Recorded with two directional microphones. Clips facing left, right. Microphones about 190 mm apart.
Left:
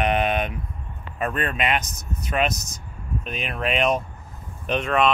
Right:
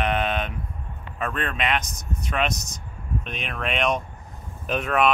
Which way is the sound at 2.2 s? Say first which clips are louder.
Left 2 dB; 5° left (ahead or behind).